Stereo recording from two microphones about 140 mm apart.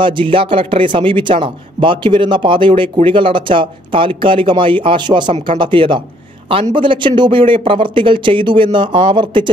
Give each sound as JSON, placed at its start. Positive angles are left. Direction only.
{"t": 0.0, "sound": "a man's voice", "side_deg": -35}